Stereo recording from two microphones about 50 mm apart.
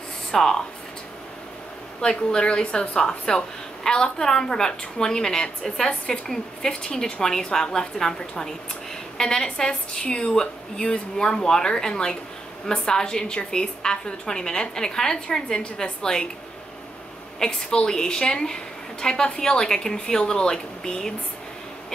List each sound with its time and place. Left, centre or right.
0.3 s speech: centre
2.0 s a woman's voice: centre
17.4 s a woman's voice: centre